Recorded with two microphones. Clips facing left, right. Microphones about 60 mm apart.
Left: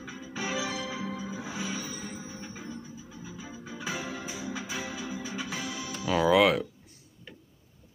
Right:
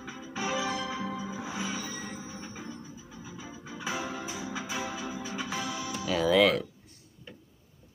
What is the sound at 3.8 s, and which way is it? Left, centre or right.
Music, centre.